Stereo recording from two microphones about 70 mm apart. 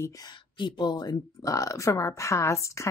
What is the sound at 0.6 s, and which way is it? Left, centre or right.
A woman's voice, left.